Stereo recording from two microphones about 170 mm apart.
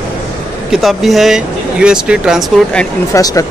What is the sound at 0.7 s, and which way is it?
Speech, centre (ahead or behind).